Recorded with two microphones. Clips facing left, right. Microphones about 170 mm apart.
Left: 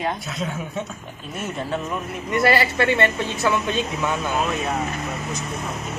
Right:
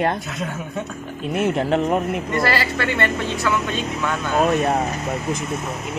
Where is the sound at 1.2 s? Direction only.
75° right (ahead or behind).